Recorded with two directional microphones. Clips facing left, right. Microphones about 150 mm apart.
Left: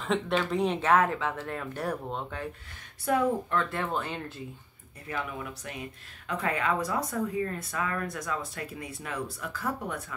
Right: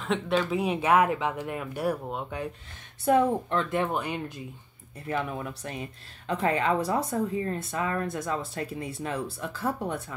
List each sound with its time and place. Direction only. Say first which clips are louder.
0.0 s speech: right 1 dB; centre (ahead or behind)
3.1 s speech: right 3 dB; 25° right (ahead or behind)
5.0 s speech: right 4 dB; 35° right (ahead or behind)